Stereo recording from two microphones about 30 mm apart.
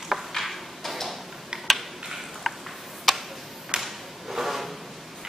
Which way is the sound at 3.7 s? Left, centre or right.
Right.